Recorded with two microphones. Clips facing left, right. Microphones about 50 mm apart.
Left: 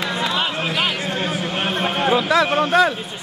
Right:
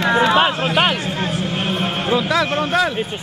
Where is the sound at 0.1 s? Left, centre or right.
Right.